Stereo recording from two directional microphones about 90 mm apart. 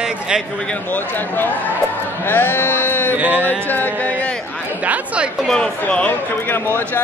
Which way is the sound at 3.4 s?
20° left (ahead or behind).